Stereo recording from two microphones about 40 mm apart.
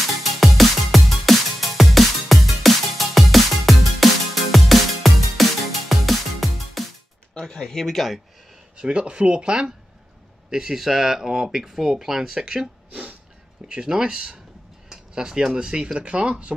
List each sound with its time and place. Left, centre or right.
0.2 s music: centre
7.4 s speech: centre
7.8 s speech: centre
8.7 s speech: right
10.5 s speech: centre
13.7 s speech: centre